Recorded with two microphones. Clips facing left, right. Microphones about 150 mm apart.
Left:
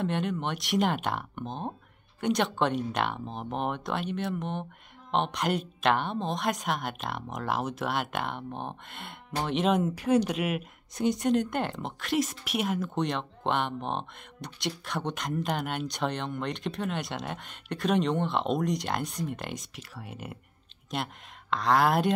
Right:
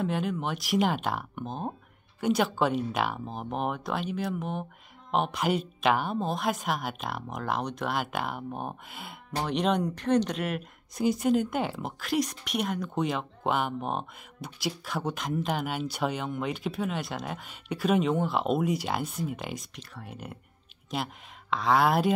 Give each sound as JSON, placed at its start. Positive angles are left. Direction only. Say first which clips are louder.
{"t": 0.0, "sound": "speech", "louder": "even", "side_deg": 0}